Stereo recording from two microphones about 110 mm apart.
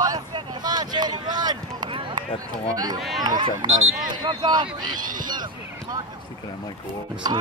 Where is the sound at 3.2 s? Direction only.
40° right (ahead or behind).